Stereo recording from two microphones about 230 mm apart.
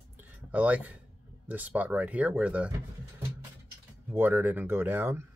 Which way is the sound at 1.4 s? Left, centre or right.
Centre.